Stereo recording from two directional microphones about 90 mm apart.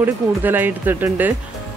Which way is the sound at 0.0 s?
20° right (ahead or behind).